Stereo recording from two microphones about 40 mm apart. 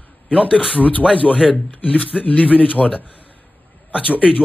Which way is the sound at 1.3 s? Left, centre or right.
Centre.